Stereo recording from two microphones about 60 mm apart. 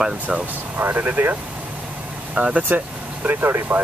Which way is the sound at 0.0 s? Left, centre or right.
Centre.